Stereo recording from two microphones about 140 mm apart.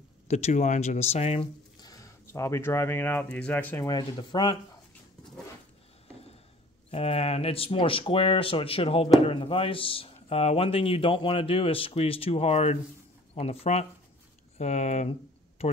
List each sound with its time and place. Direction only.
0.3 s speech: 55° left (ahead or behind)
1.8 s speech: 25° left (ahead or behind)
3.8 s speech: 30° left (ahead or behind)
6.9 s speech: 45° left (ahead or behind)